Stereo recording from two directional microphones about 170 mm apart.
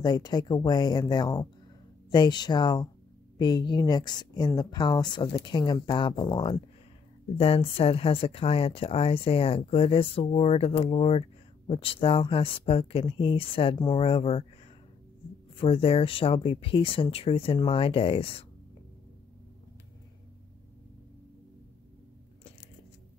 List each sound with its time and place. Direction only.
0.0 s speech: 25° left (ahead or behind)
15.5 s speech: 30° left (ahead or behind)